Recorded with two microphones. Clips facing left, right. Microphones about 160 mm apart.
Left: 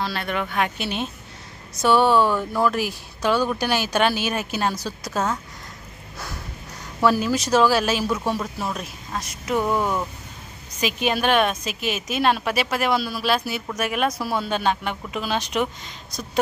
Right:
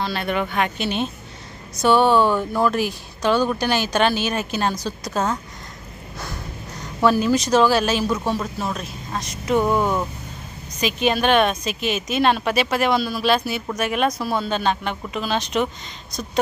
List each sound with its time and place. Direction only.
0.0 s a woman's voice: centre (ahead or behind)
7.0 s a woman's voice: 5° left (ahead or behind)
9.6 s speech: 15° right (ahead or behind)
10.8 s a woman's voice: 10° left (ahead or behind)